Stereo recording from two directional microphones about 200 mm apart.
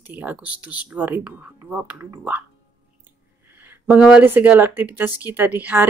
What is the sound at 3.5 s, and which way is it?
Speech, 10° right (ahead or behind).